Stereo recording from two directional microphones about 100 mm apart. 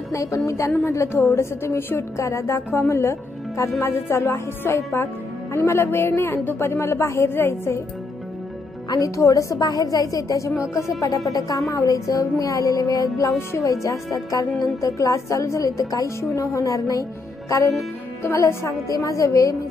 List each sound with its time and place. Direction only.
0.1 s a woman's voice: 30° left (ahead or behind)
8.9 s a woman's voice: 30° left (ahead or behind)